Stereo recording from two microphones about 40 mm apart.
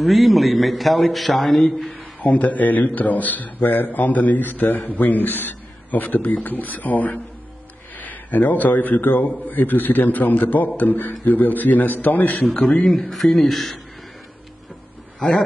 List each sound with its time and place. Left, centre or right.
0.0 s a man's voice: centre
2.2 s a man's voice: left
12.8 s a man's voice: centre